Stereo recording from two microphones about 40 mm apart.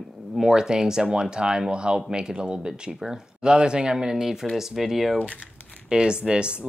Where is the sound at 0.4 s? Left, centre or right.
Centre.